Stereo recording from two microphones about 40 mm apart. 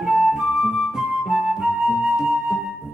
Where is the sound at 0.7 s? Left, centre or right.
Centre.